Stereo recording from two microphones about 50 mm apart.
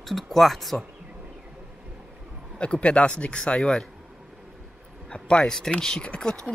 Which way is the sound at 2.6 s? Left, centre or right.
Left.